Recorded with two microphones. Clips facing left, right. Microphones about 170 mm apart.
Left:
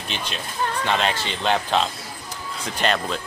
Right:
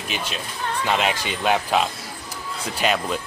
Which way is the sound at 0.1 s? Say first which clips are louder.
Right 1 dB; 5° right (ahead or behind).